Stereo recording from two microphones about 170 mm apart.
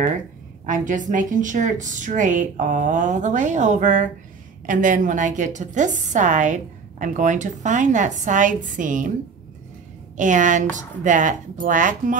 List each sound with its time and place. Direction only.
0.7 s a woman's voice: 50° right (ahead or behind)
10.1 s a woman's voice: 45° right (ahead or behind)